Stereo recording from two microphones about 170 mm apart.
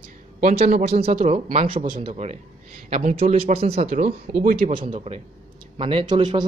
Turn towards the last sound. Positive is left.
turn(degrees=-25)  # may be behind; listen again after turning